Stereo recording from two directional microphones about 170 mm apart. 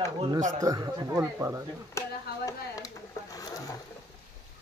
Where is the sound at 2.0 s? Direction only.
15° left (ahead or behind).